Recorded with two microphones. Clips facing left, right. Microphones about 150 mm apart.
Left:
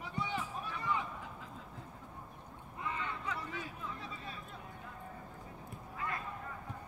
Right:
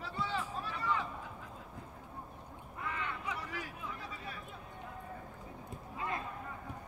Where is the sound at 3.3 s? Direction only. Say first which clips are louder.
Left 1 dB; 10° right (ahead or behind).